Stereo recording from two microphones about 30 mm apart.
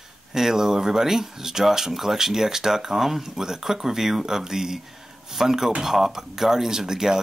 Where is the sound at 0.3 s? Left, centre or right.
Centre.